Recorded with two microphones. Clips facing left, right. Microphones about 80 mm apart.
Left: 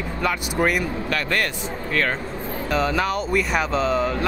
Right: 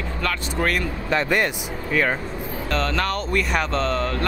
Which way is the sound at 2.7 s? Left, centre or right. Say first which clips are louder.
Left 2 dB; centre.